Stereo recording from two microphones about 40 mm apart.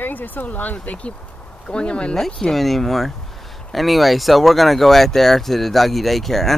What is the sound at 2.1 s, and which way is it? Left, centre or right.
Speech, centre.